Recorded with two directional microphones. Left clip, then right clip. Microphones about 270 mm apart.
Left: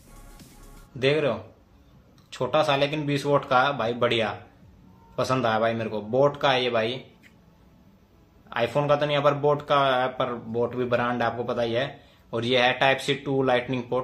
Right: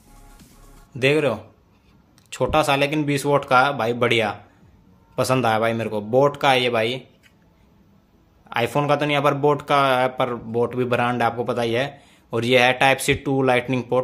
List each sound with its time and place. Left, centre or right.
0.9 s speech: right
8.5 s speech: right